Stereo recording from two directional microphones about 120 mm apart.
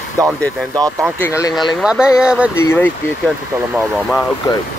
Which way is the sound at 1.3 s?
25° left (ahead or behind).